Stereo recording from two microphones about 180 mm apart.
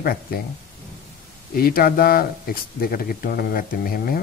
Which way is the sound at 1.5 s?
55° left (ahead or behind).